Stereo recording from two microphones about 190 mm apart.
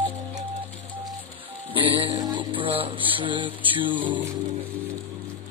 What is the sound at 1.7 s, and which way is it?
Music, 25° right (ahead or behind).